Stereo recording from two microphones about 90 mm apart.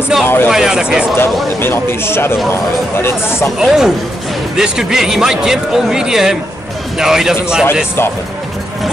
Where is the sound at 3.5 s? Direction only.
5° right (ahead or behind).